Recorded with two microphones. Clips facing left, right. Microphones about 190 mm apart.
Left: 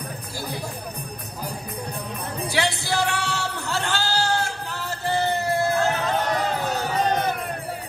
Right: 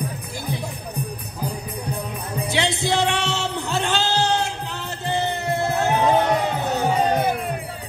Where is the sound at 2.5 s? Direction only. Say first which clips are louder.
Right 3 dB; 20° right (ahead or behind).